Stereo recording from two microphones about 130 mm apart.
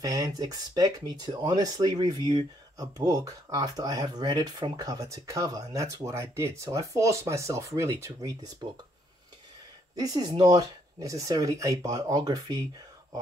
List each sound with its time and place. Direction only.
0.0 s speech: 30° right (ahead or behind)
9.9 s speech: 30° right (ahead or behind)